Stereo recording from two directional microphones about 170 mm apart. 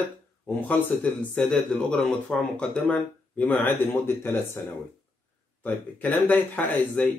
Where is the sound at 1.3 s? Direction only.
5° left (ahead or behind).